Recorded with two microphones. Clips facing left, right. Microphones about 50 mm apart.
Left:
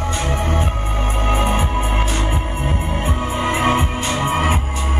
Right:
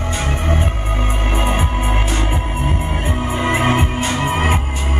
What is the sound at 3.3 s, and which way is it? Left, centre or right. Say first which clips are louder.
Music: right 1 dB; right.